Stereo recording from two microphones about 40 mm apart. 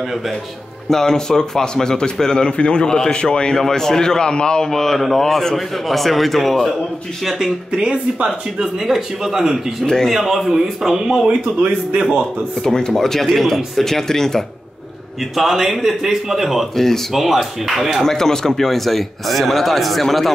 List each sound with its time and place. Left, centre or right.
0.8 s a man's voice: centre
4.6 s a man's voice: centre
7.2 s a man's voice: centre
7.7 s speech: right
8.5 s a man's voice: centre
10.5 s a man's voice: centre
12.6 s a man's voice: centre
15.3 s a man's voice: centre
16.7 s a man's voice: centre
17.1 s a man's voice: centre
18.0 s a man's voice: centre